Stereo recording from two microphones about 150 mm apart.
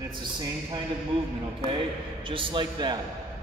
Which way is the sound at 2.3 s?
35° right (ahead or behind).